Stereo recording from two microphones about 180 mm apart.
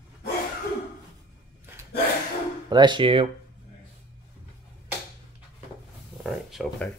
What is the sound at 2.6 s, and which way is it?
Speech, 25° right (ahead or behind).